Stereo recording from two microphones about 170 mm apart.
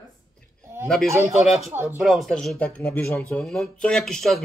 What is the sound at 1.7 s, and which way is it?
Speech, 15° right (ahead or behind).